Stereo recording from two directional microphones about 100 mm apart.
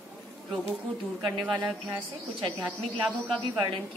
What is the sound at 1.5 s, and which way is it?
A woman's voice, 15° right (ahead or behind).